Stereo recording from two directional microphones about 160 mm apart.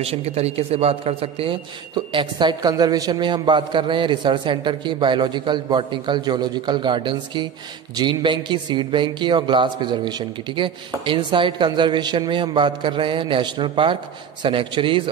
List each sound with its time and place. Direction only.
0.0 s a man's voice: 40° right (ahead or behind)